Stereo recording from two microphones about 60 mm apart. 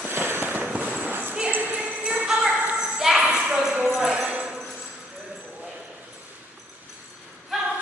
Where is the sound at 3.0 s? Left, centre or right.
Centre.